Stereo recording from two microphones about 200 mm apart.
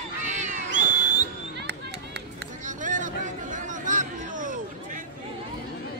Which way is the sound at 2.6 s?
40° right (ahead or behind).